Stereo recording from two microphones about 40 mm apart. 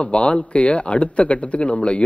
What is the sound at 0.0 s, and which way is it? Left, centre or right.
Speech, left.